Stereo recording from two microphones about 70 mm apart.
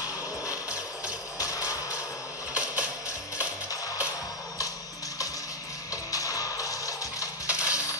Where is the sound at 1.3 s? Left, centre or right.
Left.